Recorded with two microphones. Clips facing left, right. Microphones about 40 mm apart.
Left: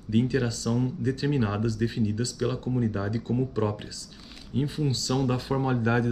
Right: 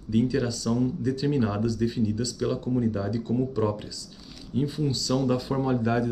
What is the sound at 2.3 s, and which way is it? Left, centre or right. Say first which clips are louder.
Speech: right 2 dB; centre.